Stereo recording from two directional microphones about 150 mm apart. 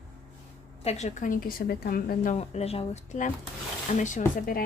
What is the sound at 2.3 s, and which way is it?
A woman's voice, 45° left (ahead or behind).